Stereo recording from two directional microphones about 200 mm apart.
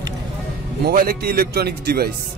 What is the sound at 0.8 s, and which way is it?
A man's voice, 50° right (ahead or behind).